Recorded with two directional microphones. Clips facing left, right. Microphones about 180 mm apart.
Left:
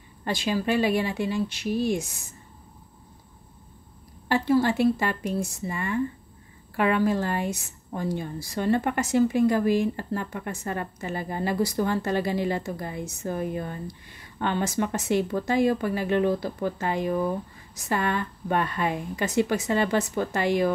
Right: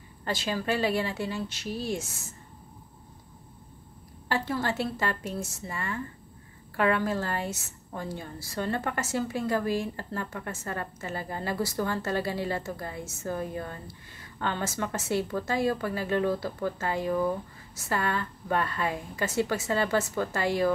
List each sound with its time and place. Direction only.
0.2 s a woman's voice: 15° left (ahead or behind)
4.3 s a woman's voice: 15° left (ahead or behind)
7.1 s a woman's voice: 15° left (ahead or behind)